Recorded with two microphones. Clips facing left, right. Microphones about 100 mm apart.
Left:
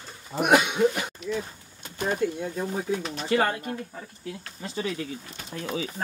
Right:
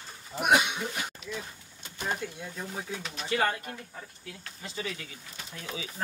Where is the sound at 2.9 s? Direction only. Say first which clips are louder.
Left 7 dB; 35° left (ahead or behind).